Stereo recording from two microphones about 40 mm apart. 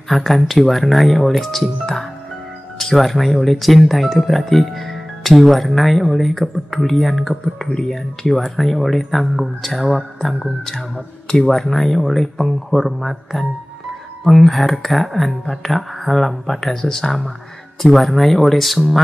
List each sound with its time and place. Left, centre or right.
0.1 s speech: centre
2.8 s speech: centre
11.2 s speech: left
11.8 s speech: centre
17.9 s speech: centre